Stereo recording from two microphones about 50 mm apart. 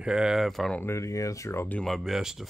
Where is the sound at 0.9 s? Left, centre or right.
Left.